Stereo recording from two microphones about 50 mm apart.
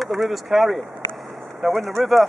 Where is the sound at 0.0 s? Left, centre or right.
Centre.